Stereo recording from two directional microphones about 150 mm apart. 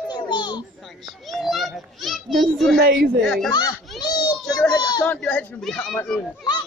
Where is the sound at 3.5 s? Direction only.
25° left (ahead or behind).